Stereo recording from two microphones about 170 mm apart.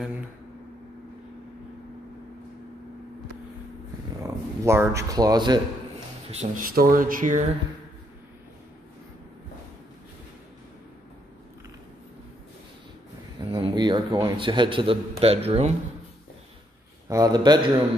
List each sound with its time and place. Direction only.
4.2 s speech: 15° right (ahead or behind)
6.3 s speech: 55° right (ahead or behind)
13.4 s a man's voice: 25° right (ahead or behind)
17.1 s a man's voice: 25° right (ahead or behind)